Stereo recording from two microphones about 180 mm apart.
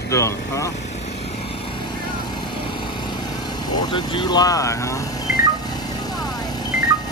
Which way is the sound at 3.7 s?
25° left (ahead or behind).